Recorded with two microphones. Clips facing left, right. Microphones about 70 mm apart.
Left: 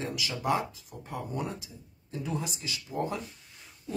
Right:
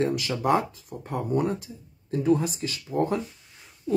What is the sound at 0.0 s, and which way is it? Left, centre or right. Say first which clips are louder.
Speech: right 8 dB; right.